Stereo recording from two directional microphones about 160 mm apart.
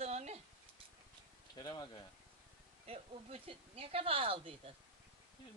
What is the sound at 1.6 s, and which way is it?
Speech, 25° left (ahead or behind).